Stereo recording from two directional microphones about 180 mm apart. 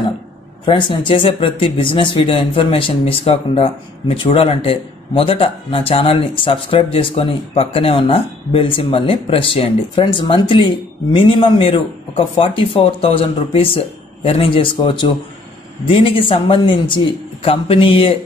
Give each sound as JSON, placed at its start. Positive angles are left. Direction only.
{"t": 0.7, "sound": "speech", "side_deg": 25}